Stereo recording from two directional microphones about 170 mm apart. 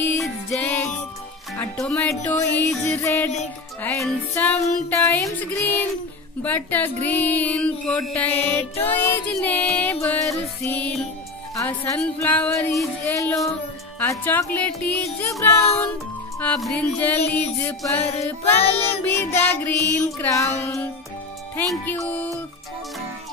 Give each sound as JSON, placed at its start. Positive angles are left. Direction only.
{"t": 0.2, "sound": "music", "side_deg": 10}
{"t": 8.3, "sound": "music", "side_deg": 35}
{"t": 8.5, "sound": "music", "side_deg": 10}
{"t": 16.3, "sound": "music", "side_deg": 5}
{"t": 18.1, "sound": "music", "side_deg": 35}
{"t": 18.9, "sound": "music", "side_deg": 15}